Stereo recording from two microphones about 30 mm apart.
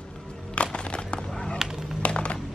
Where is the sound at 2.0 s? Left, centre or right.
Left.